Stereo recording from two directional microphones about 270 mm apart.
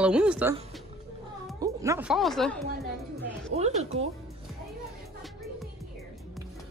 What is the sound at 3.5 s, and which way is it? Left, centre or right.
Music, right.